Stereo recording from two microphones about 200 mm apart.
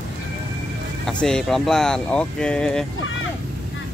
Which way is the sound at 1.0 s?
Centre (ahead or behind).